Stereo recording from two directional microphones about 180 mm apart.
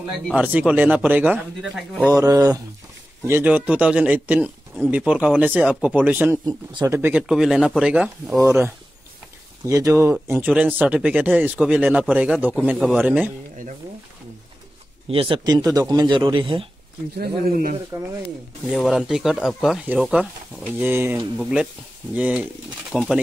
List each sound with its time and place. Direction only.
0.3 s speech: 10° right (ahead or behind)
2.1 s speech: 20° right (ahead or behind)
6.4 s speech: 25° right (ahead or behind)
6.9 s speech: 10° right (ahead or behind)
9.7 s speech: 15° right (ahead or behind)
15.0 s speech: 30° right (ahead or behind)
17.2 s speech: 50° right (ahead or behind)
18.7 s speech: centre (ahead or behind)